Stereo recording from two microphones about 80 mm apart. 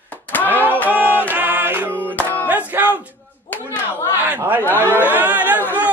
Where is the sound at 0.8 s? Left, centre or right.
Right.